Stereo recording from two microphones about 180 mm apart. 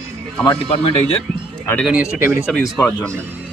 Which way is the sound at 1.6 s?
10° left (ahead or behind).